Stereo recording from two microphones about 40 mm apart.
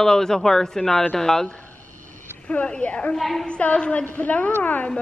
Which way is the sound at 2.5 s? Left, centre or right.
Left.